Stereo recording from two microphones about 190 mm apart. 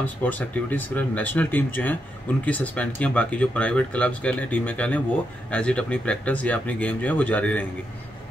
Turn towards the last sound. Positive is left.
turn(degrees=10)  # may be behind; listen again after turning